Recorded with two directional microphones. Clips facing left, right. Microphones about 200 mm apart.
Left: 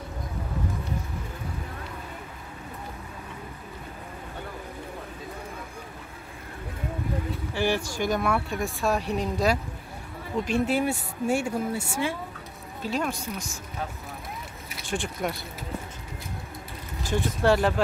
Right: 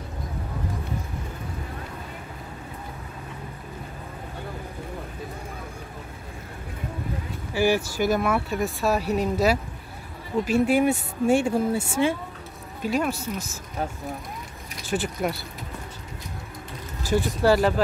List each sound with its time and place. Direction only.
7.5 s speech: 10° right (ahead or behind); by 12.2 s 25° right (ahead or behind)
12.8 s speech: 10° right (ahead or behind)
14.9 s speech: 5° right (ahead or behind)
17.0 s speech: 5° right (ahead or behind)